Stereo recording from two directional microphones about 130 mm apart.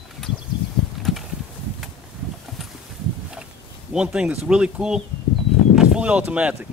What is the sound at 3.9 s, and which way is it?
Speech, 5° right (ahead or behind).